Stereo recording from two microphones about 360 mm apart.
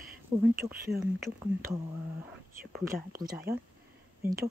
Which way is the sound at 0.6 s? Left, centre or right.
Centre.